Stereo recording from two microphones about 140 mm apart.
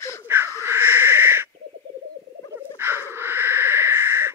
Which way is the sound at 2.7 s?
15° right (ahead or behind).